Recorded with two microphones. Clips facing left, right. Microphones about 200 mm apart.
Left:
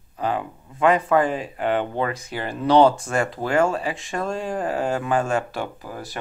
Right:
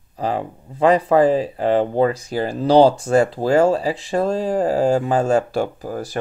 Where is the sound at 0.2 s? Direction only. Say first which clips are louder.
Right 2 dB; 35° right (ahead or behind).